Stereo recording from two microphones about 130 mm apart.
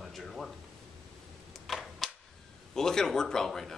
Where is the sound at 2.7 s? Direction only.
5° left (ahead or behind).